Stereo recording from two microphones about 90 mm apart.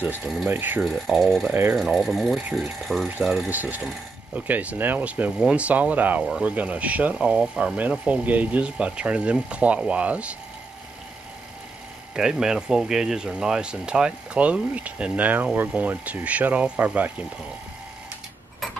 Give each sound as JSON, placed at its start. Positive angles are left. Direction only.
{"t": 0.5, "sound": "speech", "side_deg": -20}
{"t": 0.8, "sound": "speech", "side_deg": 0}
{"t": 1.5, "sound": "speech", "side_deg": -25}
{"t": 1.8, "sound": "speech", "side_deg": 0}
{"t": 4.3, "sound": "speech", "side_deg": -15}
{"t": 6.2, "sound": "speech", "side_deg": -5}
{"t": 12.2, "sound": "speech", "side_deg": -5}